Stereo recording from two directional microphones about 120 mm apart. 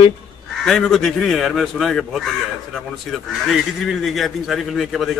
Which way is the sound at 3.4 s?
Centre (ahead or behind).